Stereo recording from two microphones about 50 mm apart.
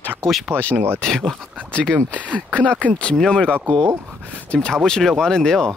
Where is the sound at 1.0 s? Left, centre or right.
Centre.